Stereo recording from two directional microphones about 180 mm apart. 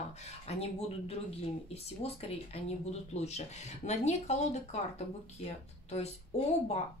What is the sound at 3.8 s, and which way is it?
Speech, 40° left (ahead or behind).